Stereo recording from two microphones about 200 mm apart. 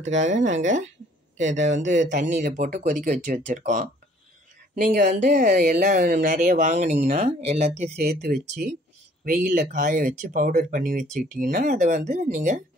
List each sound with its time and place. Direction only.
0.0 s speech: 35° right (ahead or behind)
5.3 s speech: 45° right (ahead or behind)
7.9 s speech: 50° right (ahead or behind)